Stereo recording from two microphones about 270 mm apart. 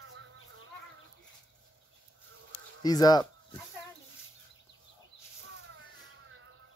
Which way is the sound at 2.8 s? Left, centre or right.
Centre.